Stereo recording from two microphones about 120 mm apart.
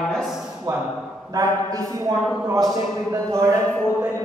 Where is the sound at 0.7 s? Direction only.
40° right (ahead or behind).